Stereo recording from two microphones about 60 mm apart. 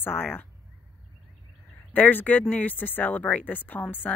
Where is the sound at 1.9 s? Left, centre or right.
Left.